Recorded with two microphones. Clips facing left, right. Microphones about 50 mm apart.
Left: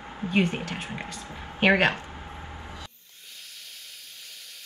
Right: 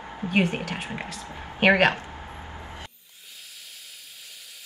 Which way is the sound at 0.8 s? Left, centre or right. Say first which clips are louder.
Right 2 dB; centre.